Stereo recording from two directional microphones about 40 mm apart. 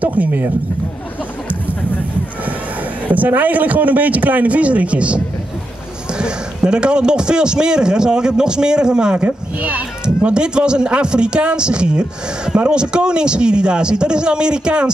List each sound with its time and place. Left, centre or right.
0.0 s a man's voice: right
3.1 s a man's voice: right
9.1 s speech: right
10.0 s a man's voice: right